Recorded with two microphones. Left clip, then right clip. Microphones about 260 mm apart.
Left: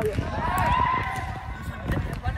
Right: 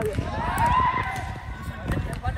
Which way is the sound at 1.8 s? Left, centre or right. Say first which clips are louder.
Right 1 dB; centre.